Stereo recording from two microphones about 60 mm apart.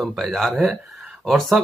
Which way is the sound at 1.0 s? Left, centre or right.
Centre.